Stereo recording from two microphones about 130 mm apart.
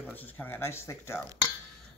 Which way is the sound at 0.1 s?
15° left (ahead or behind).